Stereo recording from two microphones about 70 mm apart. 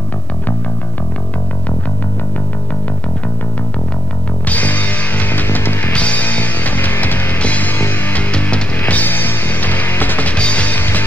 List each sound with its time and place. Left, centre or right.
4.5 s music: left